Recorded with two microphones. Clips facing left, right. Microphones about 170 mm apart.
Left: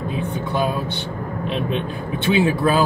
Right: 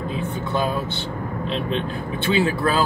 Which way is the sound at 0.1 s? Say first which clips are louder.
Left 1 dB; 15° left (ahead or behind).